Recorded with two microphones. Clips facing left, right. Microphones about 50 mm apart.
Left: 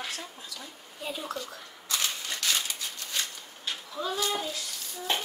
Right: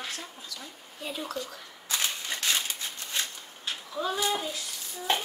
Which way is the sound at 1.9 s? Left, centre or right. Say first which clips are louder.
Right 1 dB; right.